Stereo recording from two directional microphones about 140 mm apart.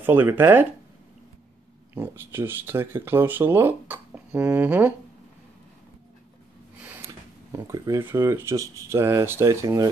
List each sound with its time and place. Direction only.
0.0 s speech: 15° right (ahead or behind)
2.0 s speech: 15° right (ahead or behind)
7.5 s speech: 25° right (ahead or behind)